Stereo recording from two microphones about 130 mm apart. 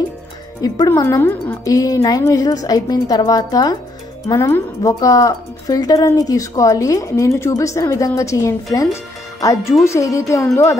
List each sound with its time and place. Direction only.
0.6 s speech: 30° left (ahead or behind)
1.0 s speech: 20° left (ahead or behind)